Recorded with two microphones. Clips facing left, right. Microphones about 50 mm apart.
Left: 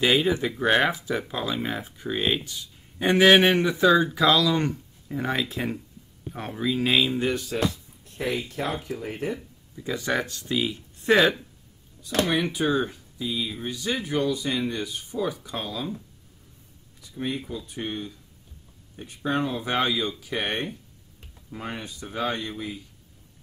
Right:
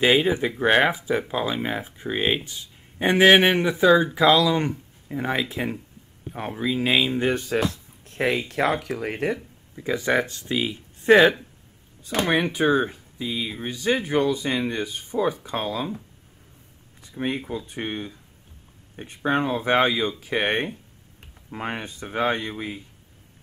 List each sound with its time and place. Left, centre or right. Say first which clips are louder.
0.0 s speech: right 2 dB; right
3.8 s speech: right 3 dB; centre
7.2 s speech: right 3 dB; right
7.5 s speech: right 2 dB; right
9.8 s speech: right 4 dB; right
12.4 s speech: right 4 dB; right
17.0 s speech: right 3 dB; right